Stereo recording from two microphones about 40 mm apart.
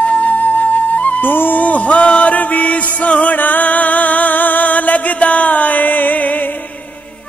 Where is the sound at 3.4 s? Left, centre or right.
Left.